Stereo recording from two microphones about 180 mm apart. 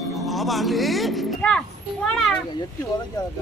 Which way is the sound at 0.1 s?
Centre (ahead or behind).